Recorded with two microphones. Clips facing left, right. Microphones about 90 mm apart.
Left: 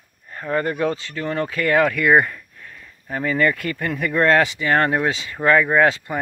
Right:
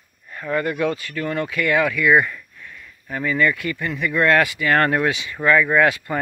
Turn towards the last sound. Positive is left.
turn(degrees=30)  # may be behind; listen again after turning